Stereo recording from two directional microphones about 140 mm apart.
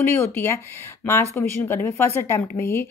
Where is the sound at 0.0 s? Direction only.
15° left (ahead or behind).